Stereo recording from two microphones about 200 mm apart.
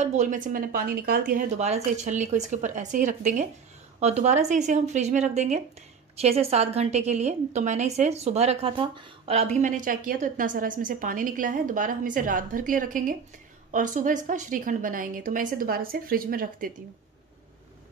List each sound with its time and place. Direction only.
0.0 s a woman's voice: 35° right (ahead or behind)
1.3 s a woman's voice: 35° right (ahead or behind)
9.6 s a woman's voice: 40° right (ahead or behind)